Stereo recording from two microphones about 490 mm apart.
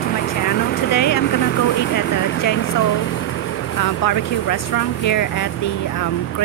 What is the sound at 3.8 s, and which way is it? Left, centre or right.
Speech, left.